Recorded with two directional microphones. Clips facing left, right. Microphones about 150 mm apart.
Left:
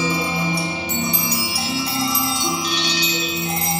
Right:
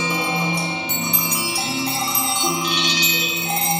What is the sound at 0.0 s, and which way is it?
Music, 35° left (ahead or behind).